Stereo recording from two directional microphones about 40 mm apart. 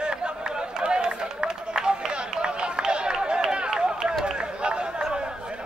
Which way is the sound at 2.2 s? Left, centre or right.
Centre.